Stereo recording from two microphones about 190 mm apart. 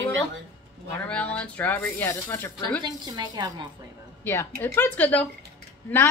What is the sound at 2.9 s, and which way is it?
Speech, 20° right (ahead or behind).